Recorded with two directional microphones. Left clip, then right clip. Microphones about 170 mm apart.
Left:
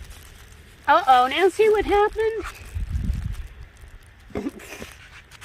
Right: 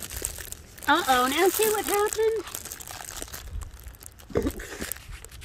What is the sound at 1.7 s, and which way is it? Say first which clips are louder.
Speech: left 6 dB; 40° left (ahead or behind).